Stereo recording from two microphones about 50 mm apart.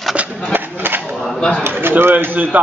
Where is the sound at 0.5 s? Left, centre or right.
Right.